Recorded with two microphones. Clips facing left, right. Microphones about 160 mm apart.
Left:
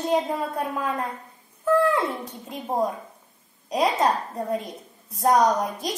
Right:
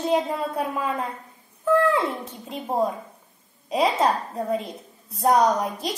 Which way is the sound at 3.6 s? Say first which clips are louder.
Right 1 dB; 5° right (ahead or behind).